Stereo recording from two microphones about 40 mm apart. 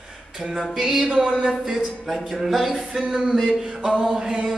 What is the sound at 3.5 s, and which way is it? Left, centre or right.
Music, centre.